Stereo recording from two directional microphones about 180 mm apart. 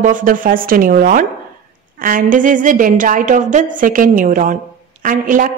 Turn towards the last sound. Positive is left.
turn(degrees=-50)  # may be behind; listen again after turning